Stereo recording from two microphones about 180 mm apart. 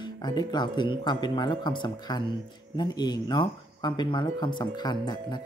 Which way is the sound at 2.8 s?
25° left (ahead or behind).